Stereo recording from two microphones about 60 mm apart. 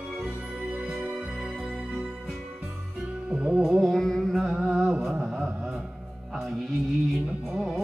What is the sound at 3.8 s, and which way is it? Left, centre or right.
Music, centre.